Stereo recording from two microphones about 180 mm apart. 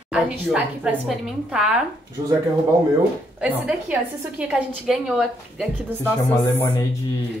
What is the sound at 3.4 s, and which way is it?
A woman's voice, 5° right (ahead or behind).